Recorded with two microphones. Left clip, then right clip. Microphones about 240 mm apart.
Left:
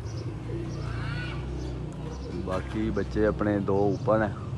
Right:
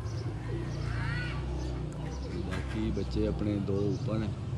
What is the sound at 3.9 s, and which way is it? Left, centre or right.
Speech, centre.